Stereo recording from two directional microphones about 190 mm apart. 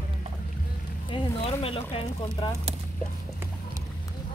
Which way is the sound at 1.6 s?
30° left (ahead or behind).